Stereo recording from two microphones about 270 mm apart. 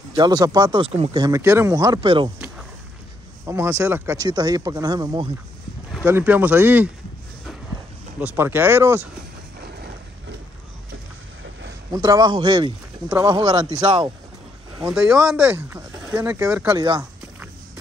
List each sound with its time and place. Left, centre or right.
0.1 s speech: centre
3.4 s speech: centre
8.2 s speech: centre
11.9 s speech: centre
14.9 s speech: centre
16.8 s a sound: centre